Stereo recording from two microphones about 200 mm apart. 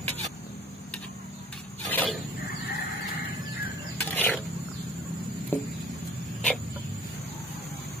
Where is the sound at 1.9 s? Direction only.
10° left (ahead or behind).